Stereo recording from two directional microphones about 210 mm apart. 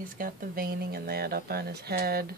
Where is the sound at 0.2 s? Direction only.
45° right (ahead or behind).